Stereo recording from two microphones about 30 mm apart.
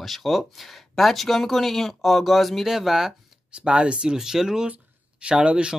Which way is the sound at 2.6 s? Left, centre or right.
Centre.